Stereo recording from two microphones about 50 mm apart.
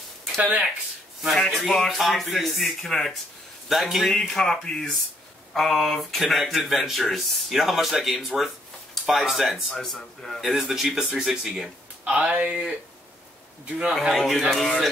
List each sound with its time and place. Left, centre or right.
0.4 s speech: right
1.3 s speech: centre
3.6 s speech: centre
4.1 s speech: centre
9.8 s speech: centre
12.0 s speech: right
13.9 s speech: centre